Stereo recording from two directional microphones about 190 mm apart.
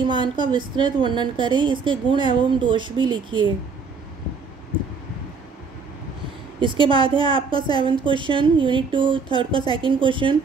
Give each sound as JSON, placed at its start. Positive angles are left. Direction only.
{"t": 0.0, "sound": "a woman's voice", "side_deg": -25}
{"t": 6.6, "sound": "a woman's voice", "side_deg": -25}